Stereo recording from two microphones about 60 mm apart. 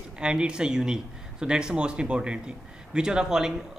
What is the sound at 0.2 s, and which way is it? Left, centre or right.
Speech, centre.